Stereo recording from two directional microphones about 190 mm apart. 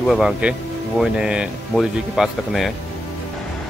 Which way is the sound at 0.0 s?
Centre (ahead or behind).